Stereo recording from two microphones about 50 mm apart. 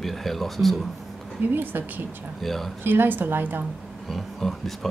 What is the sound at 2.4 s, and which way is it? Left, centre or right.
Speech, centre.